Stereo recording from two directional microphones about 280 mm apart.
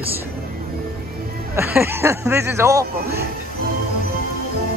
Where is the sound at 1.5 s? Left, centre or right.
Centre.